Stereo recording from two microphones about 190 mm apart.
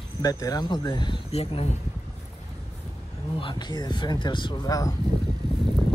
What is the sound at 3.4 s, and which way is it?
Speech, 20° left (ahead or behind).